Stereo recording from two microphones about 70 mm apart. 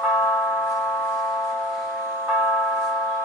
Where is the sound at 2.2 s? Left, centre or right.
Centre.